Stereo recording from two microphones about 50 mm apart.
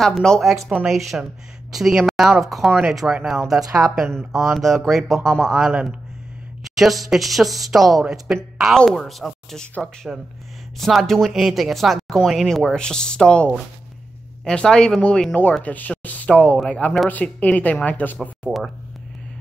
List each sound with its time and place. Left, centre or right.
0.0 s speech: centre
0.4 s speech: centre
4.3 s speech: centre
8.3 s speech: centre
8.7 s speech: centre
9.0 s speech: centre
10.8 s speech: centre
12.6 s a woman's voice: centre
15.6 s a sound: left
16.6 s a woman's voice: left